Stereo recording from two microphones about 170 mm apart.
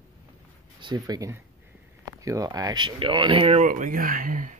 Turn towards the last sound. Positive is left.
turn(degrees=-50)  # may be behind; listen again after turning